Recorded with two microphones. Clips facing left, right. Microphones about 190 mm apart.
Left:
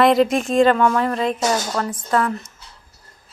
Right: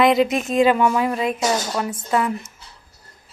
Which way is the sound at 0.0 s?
Centre (ahead or behind).